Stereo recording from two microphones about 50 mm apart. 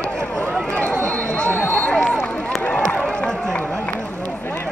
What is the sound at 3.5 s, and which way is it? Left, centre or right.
Run, left.